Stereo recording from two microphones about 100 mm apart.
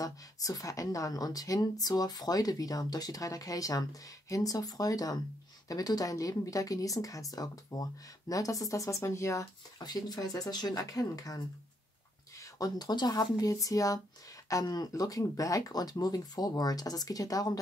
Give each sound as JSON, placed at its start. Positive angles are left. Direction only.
{"t": 0.0, "sound": "a woman's voice", "side_deg": 35}
{"t": 9.8, "sound": "a woman's voice", "side_deg": 40}